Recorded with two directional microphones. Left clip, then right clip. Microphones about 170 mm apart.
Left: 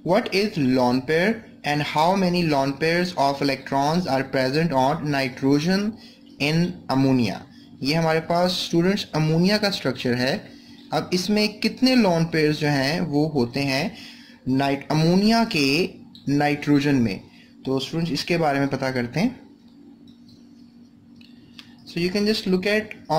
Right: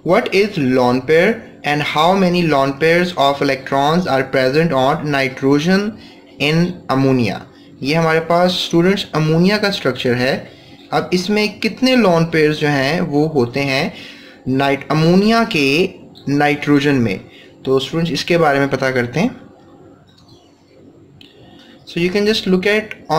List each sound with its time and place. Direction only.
0.0 s speech: 15° left (ahead or behind)
21.8 s speech: 15° left (ahead or behind)